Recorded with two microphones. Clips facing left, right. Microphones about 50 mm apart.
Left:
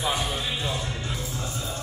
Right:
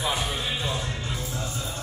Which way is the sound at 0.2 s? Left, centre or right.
Centre.